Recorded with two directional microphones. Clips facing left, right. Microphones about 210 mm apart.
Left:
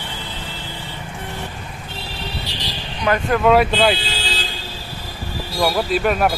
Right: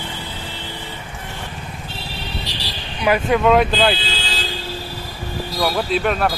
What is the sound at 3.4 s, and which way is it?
Speech, 5° left (ahead or behind).